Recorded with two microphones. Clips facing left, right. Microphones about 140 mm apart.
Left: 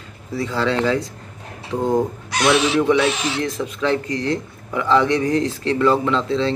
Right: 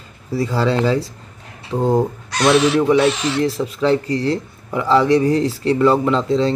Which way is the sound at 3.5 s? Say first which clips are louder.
Right 4 dB; 35° right (ahead or behind).